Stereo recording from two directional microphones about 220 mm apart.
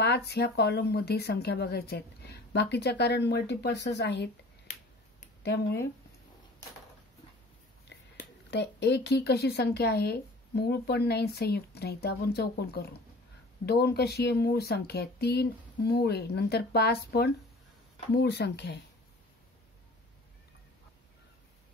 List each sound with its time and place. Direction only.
0.0 s speech: 50° left (ahead or behind)
5.4 s speech: 50° left (ahead or behind)
8.5 s speech: 50° left (ahead or behind)